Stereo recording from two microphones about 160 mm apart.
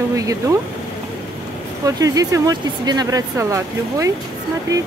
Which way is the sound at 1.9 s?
20° right (ahead or behind).